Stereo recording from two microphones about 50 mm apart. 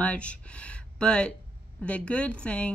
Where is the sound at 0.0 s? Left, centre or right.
Left.